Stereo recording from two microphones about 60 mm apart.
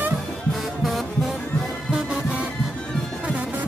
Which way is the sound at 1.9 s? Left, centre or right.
Centre.